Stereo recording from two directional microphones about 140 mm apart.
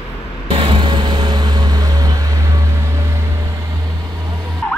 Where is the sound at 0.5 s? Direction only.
40° right (ahead or behind); by 3.3 s 20° right (ahead or behind).